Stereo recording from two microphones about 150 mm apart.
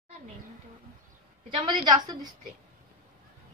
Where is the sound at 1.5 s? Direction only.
30° right (ahead or behind).